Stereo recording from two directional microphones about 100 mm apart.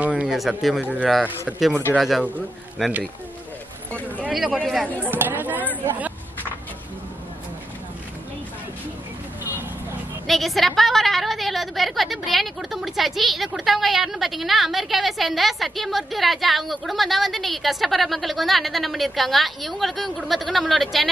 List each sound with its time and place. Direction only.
0.0 s a sound: 10° right (ahead or behind)
0.3 s a woman's voice: centre (ahead or behind)
0.7 s speech: 15° right (ahead or behind)
2.0 s a woman's voice: centre (ahead or behind)
5.0 s chatter: 20° right (ahead or behind)
5.9 s a sound: 15° right (ahead or behind)
9.4 s vehicle: 20° right (ahead or behind)
10.2 s a woman's voice: centre (ahead or behind)